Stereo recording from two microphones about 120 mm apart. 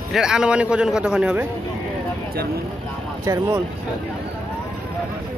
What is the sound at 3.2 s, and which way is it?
Speech, 25° right (ahead or behind).